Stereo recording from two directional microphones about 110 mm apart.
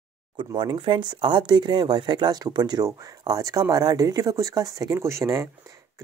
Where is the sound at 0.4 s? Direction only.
50° right (ahead or behind).